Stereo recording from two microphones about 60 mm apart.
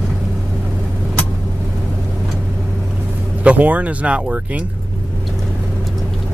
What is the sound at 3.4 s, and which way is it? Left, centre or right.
Speech, right.